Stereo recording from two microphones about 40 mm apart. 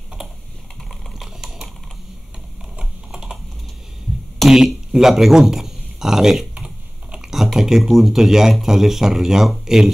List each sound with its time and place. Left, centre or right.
2.8 s typing: centre
4.5 s a man's voice: centre
6.5 s computer keyboard: right
7.2 s typing: centre
7.5 s speech: centre